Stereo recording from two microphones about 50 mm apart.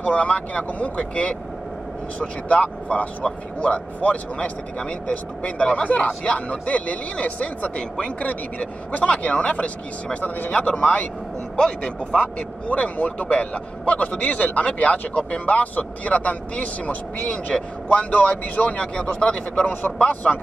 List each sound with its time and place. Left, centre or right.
0.0 s a man's voice: left
2.4 s a man's voice: left
12.4 s a man's voice: left
17.6 s speech: centre
18.1 s a man's voice: left
19.6 s a man's voice: left